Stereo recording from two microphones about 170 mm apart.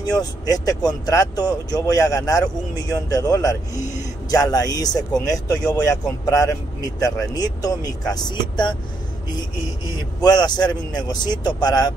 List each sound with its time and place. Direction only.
0.0 s speech: 20° left (ahead or behind)
10.2 s speech: 25° left (ahead or behind)